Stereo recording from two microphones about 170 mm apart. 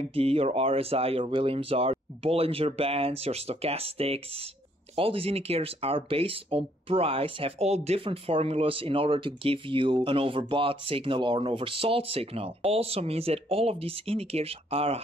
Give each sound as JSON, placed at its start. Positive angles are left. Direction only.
{"t": 0.1, "sound": "speech", "side_deg": -35}